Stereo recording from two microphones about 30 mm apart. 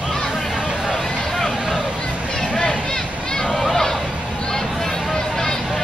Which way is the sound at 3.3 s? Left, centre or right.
Left.